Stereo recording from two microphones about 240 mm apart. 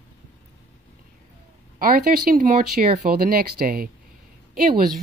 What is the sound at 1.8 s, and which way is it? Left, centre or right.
Speech, right.